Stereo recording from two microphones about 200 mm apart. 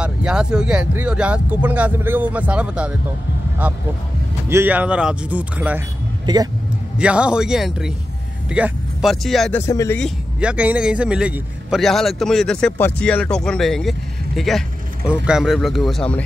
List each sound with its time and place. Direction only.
0.0 s a man's voice: 5° right (ahead or behind)
6.2 s speech: 20° right (ahead or behind)
7.0 s a man's voice: 5° right (ahead or behind)
9.6 s speech: 15° left (ahead or behind)
9.9 s a man's voice: centre (ahead or behind)